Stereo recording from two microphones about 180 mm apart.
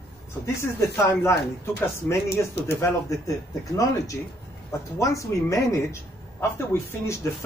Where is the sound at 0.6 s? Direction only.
15° left (ahead or behind).